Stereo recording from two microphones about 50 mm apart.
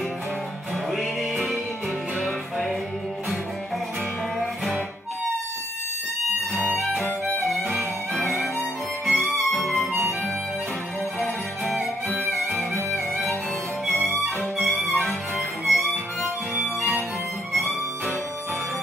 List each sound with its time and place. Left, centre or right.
0.9 s music: centre
6.5 s music: right
8.1 s music: centre
11.1 s music: centre
12.9 s music: centre
15.3 s music: centre